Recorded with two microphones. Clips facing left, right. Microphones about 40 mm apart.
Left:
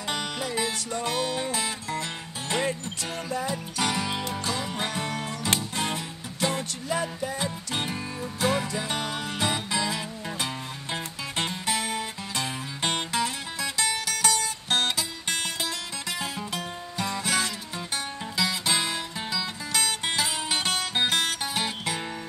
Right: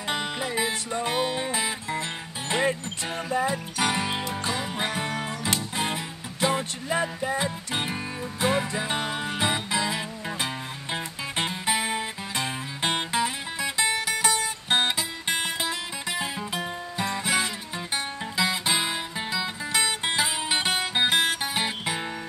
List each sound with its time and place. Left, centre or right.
0.1 s music: centre